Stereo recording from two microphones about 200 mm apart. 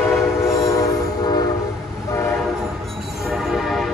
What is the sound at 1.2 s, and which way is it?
Train, 20° left (ahead or behind).